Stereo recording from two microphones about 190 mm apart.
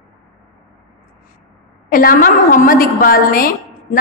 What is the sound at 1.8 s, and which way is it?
A woman's voice, 45° left (ahead or behind).